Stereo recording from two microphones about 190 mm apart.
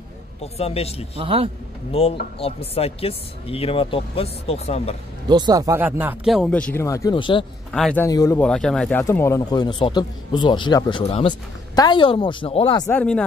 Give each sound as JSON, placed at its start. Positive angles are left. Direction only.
{"t": 0.4, "sound": "speech", "side_deg": 35}
{"t": 1.1, "sound": "speech", "side_deg": -30}
{"t": 1.9, "sound": "speech", "side_deg": 30}
{"t": 5.3, "sound": "speech", "side_deg": -20}
{"t": 7.7, "sound": "speech", "side_deg": 5}
{"t": 8.1, "sound": "speech", "side_deg": 20}
{"t": 8.4, "sound": "speech", "side_deg": 5}
{"t": 12.8, "sound": "speech", "side_deg": 5}